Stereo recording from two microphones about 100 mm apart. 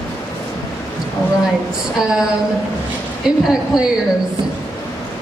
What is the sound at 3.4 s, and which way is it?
Speech, 5° right (ahead or behind).